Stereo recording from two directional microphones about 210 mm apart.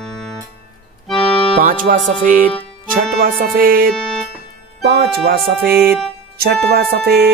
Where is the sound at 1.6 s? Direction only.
40° right (ahead or behind).